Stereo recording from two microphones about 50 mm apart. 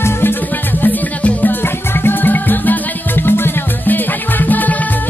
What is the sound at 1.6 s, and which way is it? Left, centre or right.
Music, left.